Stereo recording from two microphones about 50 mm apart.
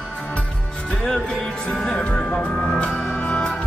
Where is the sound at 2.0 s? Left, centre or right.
Left.